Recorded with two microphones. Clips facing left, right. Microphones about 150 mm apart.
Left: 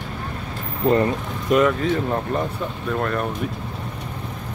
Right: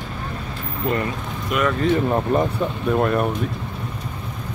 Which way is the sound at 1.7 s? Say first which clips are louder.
Right 2 dB; centre (ahead or behind).